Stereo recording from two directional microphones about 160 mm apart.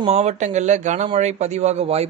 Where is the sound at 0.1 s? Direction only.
45° right (ahead or behind).